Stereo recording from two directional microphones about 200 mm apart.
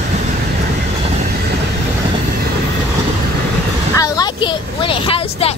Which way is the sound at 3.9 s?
20° left (ahead or behind).